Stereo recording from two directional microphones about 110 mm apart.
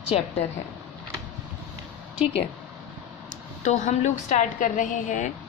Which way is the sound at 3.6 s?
90° left.